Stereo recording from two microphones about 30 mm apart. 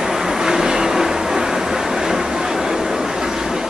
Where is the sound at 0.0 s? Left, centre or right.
Centre.